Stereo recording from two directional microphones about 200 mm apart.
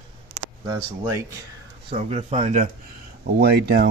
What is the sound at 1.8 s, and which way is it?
Speech, 30° right (ahead or behind).